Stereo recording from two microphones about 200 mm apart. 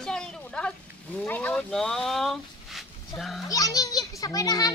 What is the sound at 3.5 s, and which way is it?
A child's voice, 15° left (ahead or behind).